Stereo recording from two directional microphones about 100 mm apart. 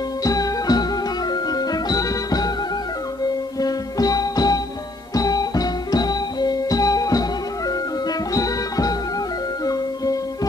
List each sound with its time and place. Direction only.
0.2 s music: 35° left (ahead or behind)
3.6 s music: 40° left (ahead or behind)
8.4 s music: 35° left (ahead or behind)